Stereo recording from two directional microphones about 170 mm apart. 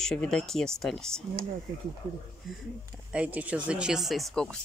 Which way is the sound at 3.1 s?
10° right (ahead or behind).